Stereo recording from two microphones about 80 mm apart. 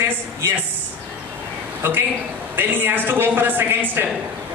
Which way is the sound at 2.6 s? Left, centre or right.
Right.